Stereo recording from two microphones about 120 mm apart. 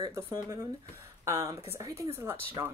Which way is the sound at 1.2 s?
25° right (ahead or behind).